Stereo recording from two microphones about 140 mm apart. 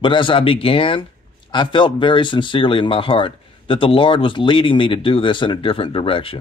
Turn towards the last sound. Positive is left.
turn(degrees=40)  # may be behind; listen again after turning